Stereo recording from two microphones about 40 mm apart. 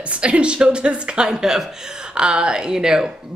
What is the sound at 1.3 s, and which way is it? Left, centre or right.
Speech, centre.